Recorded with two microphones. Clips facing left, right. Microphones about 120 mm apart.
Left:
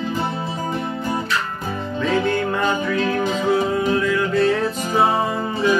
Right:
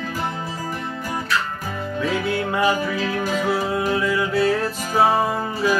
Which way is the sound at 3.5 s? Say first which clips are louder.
Left 5 dB; 5° right (ahead or behind).